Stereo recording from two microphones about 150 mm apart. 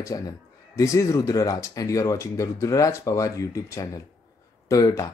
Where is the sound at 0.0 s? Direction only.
25° left (ahead or behind).